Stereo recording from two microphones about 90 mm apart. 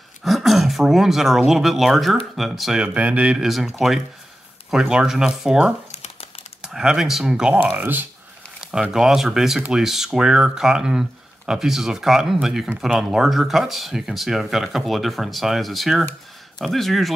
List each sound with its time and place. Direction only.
0.2 s speech: centre (ahead or behind)
2.8 s speech: 15° right (ahead or behind)
3.4 s speech: centre (ahead or behind)
7.7 s speech: 20° right (ahead or behind)
8.9 s speech: 5° right (ahead or behind)